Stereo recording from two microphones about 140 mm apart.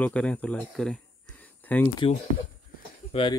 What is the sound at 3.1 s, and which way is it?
Speech, 40° left (ahead or behind).